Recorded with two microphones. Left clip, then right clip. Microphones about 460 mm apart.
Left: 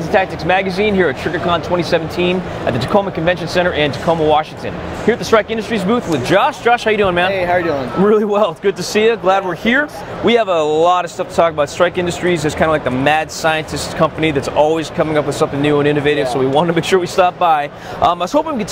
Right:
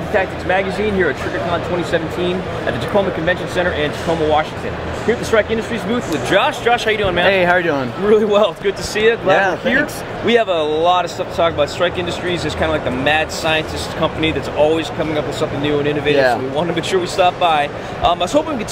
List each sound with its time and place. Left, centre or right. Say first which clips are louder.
0.1 s speech: left 3 dB; left
7.3 s speech: right 1 dB; right
8.1 s speech: right 2 dB; left
10.2 s speech: left 2 dB; left